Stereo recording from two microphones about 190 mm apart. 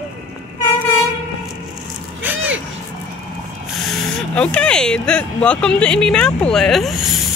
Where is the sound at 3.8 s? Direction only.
5° left (ahead or behind).